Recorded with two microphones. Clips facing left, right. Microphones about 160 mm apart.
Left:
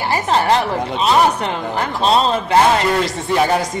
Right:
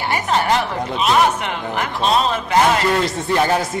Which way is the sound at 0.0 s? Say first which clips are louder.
Left 2 dB; 35° left (ahead or behind).